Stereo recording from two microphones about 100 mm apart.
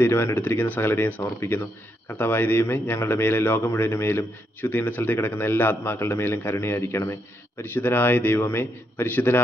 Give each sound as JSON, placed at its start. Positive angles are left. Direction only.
{"t": 0.0, "sound": "a man's voice", "side_deg": 25}